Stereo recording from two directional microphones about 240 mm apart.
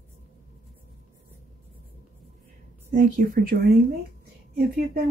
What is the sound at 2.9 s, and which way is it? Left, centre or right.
Speech, right.